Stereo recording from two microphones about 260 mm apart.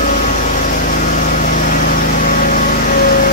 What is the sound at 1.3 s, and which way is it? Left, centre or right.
Vehicle, left.